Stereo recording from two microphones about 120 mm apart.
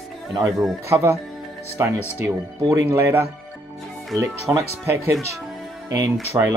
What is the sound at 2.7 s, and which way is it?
Speech, 25° right (ahead or behind).